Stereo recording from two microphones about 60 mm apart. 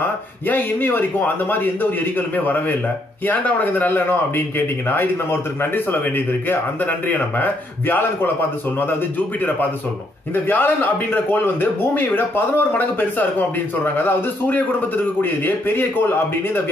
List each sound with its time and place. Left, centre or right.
0.5 s a man's voice: left
10.3 s a man's voice: left